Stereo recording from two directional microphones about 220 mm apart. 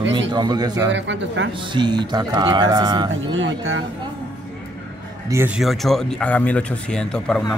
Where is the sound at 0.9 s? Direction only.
55° right (ahead or behind).